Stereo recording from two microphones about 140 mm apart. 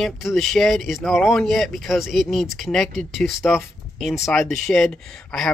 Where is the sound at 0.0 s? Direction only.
Centre (ahead or behind).